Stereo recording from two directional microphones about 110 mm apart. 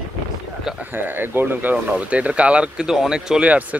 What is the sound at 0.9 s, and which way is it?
Speech, 20° right (ahead or behind).